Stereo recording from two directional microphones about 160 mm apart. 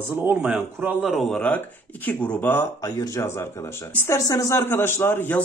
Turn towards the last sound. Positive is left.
turn(degrees=15)  # may be behind; listen again after turning